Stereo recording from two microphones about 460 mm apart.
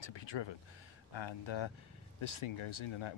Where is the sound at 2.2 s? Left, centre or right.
Left.